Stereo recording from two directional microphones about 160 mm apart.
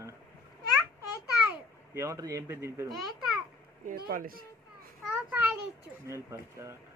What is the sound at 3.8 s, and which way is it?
Speech, 65° right (ahead or behind).